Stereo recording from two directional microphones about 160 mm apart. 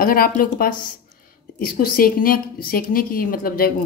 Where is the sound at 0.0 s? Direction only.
65° left (ahead or behind).